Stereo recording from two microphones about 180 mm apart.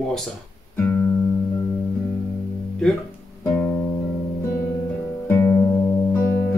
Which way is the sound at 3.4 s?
10° left (ahead or behind).